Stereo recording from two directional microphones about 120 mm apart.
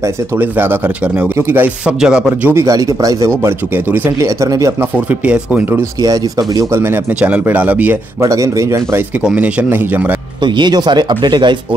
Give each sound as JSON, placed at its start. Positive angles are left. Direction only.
{"t": 0.0, "sound": "speech", "side_deg": -20}
{"t": 2.0, "sound": "speech", "side_deg": -5}
{"t": 2.5, "sound": "speech", "side_deg": -25}
{"t": 3.4, "sound": "speech", "side_deg": -15}
{"t": 5.0, "sound": "speech", "side_deg": -10}
{"t": 5.8, "sound": "speech", "side_deg": -30}
{"t": 8.2, "sound": "speech", "side_deg": -25}
{"t": 9.2, "sound": "speech", "side_deg": -10}
{"t": 10.4, "sound": "speech", "side_deg": -40}